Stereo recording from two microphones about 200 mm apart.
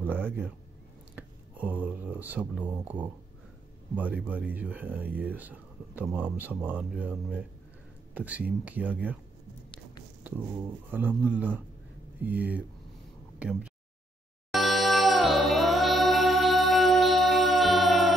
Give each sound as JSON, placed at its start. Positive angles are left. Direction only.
{"t": 0.0, "sound": "a sound", "side_deg": -10}
{"t": 1.1, "sound": "speech", "side_deg": -10}
{"t": 10.9, "sound": "speech", "side_deg": -10}
{"t": 14.5, "sound": "music", "side_deg": 0}